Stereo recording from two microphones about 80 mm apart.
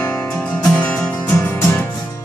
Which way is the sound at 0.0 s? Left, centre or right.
Centre.